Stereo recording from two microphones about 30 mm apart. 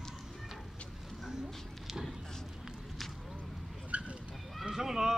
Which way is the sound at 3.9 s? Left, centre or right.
Right.